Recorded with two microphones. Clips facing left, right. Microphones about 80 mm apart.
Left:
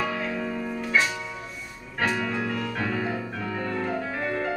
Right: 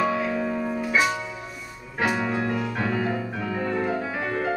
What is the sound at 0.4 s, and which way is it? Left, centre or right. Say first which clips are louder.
Music: right 4 dB; centre.